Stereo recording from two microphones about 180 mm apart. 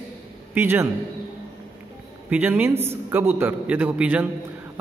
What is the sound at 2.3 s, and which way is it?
A man's voice, 10° right (ahead or behind).